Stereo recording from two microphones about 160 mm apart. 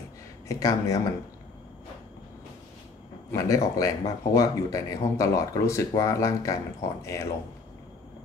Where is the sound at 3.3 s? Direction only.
20° left (ahead or behind).